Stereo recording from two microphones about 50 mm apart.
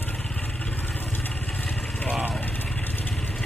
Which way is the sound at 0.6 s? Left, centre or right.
Left.